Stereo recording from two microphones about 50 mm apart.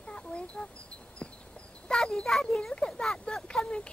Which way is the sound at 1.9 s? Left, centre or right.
Centre.